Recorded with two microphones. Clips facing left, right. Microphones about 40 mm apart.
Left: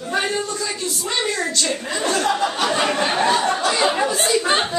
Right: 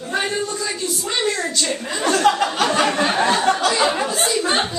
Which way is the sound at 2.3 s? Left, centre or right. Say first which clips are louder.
Right 3 dB; right.